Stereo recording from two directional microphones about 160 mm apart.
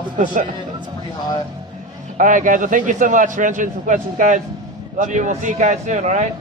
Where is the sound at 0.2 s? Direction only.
55° right (ahead or behind).